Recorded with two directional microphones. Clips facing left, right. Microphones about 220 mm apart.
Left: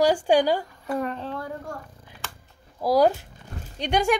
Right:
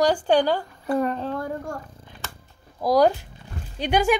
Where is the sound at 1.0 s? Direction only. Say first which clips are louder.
Right 4 dB; 40° right (ahead or behind).